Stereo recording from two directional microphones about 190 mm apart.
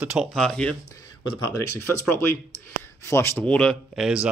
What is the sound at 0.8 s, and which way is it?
Speech, 20° left (ahead or behind).